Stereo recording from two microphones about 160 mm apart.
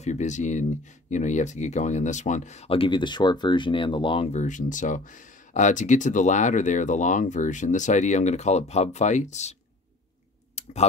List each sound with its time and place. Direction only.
0.0 s speech: 45° left (ahead or behind)
10.5 s clicking: 45° left (ahead or behind)